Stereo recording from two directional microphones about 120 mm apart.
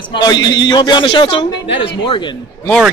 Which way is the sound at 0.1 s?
35° left (ahead or behind).